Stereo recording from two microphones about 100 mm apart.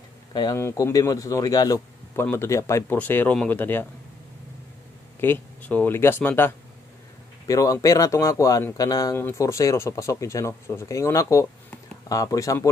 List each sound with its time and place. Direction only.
0.3 s speech: 45° left (ahead or behind)
0.6 s speech: 25° left (ahead or behind)
2.3 s speech: 30° left (ahead or behind)
3.0 s speech: 20° left (ahead or behind)
5.2 s speech: 15° left (ahead or behind)
7.4 s speech: 35° left (ahead or behind)